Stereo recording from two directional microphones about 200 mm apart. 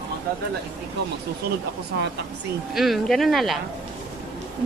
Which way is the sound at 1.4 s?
55° right (ahead or behind).